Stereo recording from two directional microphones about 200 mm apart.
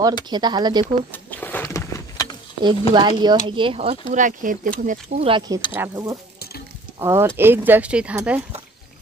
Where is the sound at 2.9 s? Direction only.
25° right (ahead or behind); by 8.4 s 5° right (ahead or behind).